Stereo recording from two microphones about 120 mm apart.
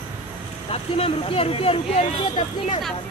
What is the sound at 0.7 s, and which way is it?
Speech, 55° left (ahead or behind).